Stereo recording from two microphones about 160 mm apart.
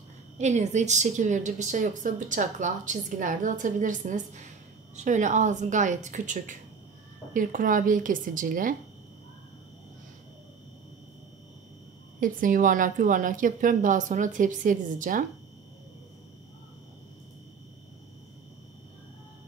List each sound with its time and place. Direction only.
0.4 s a woman's voice: 45° right (ahead or behind)
12.2 s a woman's voice: 60° right (ahead or behind)